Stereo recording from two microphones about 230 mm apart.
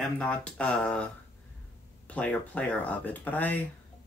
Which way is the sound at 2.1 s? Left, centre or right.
Centre.